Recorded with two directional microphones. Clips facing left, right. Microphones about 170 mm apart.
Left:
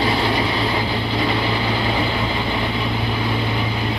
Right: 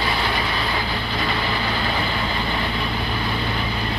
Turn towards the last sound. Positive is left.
turn(degrees=15)  # may be behind; listen again after turning